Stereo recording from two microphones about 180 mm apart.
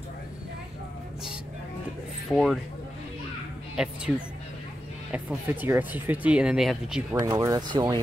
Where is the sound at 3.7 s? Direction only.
5° right (ahead or behind).